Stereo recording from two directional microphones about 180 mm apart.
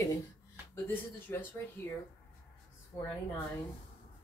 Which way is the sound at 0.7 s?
10° left (ahead or behind).